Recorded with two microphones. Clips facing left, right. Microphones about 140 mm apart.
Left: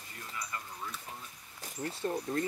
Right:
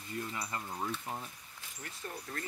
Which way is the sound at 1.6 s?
30° left (ahead or behind).